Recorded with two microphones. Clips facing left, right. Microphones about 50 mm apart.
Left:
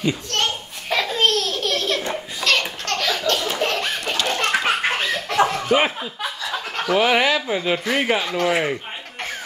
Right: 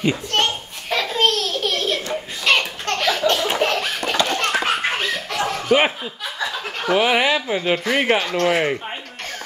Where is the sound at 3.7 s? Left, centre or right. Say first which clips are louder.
Right 1 dB; centre.